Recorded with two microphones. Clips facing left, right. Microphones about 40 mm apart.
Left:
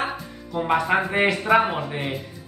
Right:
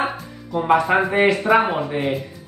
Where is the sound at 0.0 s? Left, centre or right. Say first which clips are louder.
Right 3 dB; centre.